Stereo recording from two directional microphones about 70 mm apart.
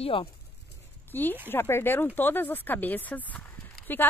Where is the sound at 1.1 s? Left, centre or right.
Left.